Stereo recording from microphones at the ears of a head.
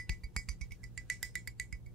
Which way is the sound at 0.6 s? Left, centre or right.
Right.